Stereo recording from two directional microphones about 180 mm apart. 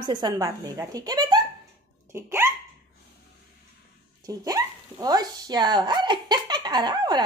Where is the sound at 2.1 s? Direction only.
15° right (ahead or behind).